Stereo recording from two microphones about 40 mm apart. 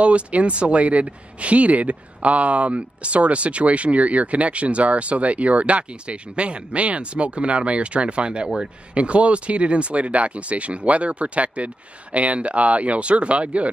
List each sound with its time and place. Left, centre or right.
0.0 s speech: right